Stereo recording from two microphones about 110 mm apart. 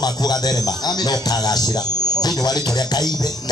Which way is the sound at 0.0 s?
35° left (ahead or behind).